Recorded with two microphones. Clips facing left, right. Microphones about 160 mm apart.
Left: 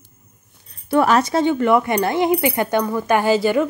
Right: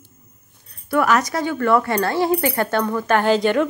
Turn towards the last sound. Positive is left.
turn(degrees=5)  # may be behind; listen again after turning